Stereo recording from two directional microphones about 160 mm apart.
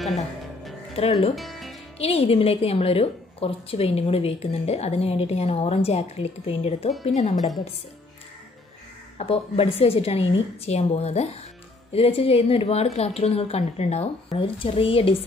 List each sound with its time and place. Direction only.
1.3 s music: centre (ahead or behind)
2.0 s a woman's voice: 40° left (ahead or behind)
6.9 s speech: centre (ahead or behind)
7.2 s speech: 45° left (ahead or behind)
9.2 s a woman's voice: 35° left (ahead or behind)